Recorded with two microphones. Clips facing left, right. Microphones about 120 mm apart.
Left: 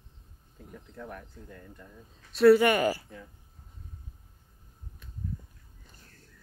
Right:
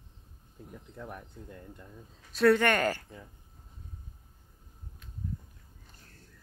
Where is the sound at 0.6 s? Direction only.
15° right (ahead or behind).